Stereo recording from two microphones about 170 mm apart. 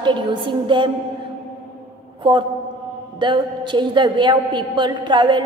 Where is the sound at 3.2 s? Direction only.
25° right (ahead or behind).